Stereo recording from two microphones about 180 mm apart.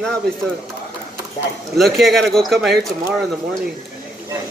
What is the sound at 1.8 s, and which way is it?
Speech, centre (ahead or behind).